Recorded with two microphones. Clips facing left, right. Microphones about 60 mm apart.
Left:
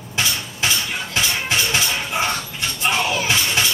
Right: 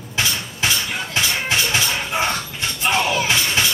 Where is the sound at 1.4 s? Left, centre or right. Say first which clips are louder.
Right 1 dB; right.